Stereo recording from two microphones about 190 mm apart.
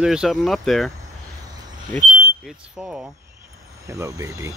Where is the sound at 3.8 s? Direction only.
15° right (ahead or behind).